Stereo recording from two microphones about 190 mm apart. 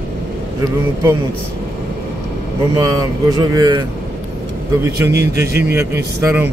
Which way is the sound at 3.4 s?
20° right (ahead or behind).